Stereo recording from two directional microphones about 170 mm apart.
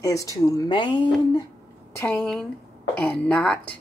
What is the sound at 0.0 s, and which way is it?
Speech, 20° left (ahead or behind).